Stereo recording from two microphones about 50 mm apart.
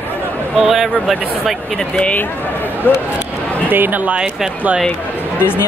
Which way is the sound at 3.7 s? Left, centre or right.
Right.